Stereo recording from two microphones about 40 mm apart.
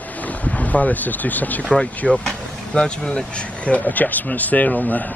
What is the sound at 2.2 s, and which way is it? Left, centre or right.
Speech, left.